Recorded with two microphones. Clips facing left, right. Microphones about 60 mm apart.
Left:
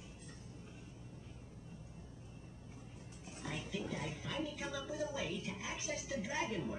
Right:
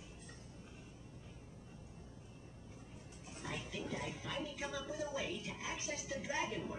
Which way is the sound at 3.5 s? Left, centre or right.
Centre.